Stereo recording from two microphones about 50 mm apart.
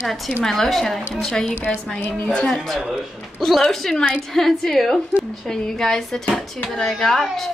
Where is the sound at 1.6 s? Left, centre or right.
Left.